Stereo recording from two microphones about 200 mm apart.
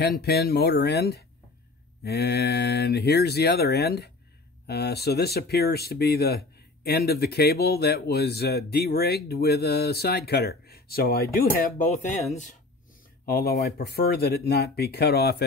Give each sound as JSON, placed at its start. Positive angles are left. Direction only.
{"t": 0.2, "sound": "speech", "side_deg": 50}